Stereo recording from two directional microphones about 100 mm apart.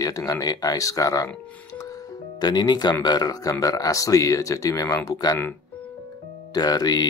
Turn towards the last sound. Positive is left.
turn(degrees=40)  # may be behind; listen again after turning